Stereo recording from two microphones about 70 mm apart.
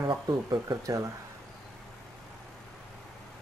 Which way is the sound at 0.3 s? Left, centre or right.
Right.